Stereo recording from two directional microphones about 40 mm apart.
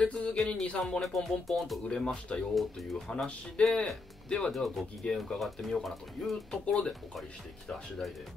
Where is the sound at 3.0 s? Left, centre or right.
Centre.